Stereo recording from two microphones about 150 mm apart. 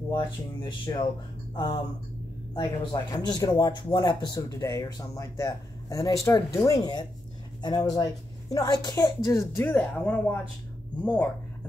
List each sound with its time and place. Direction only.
0.1 s speech: 30° left (ahead or behind)
2.5 s speech: 35° left (ahead or behind); by 11.2 s 10° left (ahead or behind)